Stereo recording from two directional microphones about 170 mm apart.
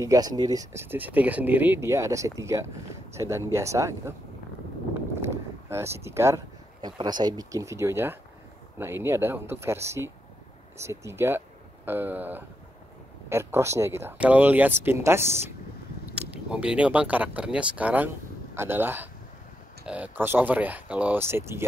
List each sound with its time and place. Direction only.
0.0 s speech: 20° right (ahead or behind)
5.3 s speech: 15° right (ahead or behind)